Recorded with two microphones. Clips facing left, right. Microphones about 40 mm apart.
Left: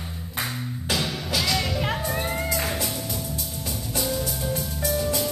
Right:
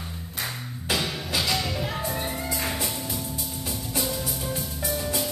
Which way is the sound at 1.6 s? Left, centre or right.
Centre.